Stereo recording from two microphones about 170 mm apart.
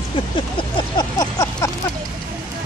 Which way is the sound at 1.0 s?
20° left (ahead or behind).